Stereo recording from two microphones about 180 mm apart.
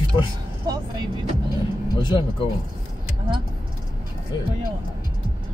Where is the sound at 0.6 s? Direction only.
20° right (ahead or behind).